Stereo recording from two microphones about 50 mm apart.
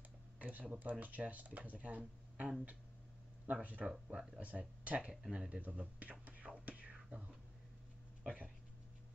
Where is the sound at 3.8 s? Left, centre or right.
Centre.